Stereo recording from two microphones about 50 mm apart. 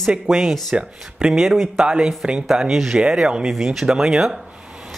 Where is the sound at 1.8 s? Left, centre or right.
Centre.